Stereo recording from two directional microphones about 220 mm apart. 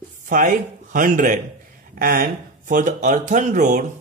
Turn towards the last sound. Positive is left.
turn(degrees=-35)  # may be behind; listen again after turning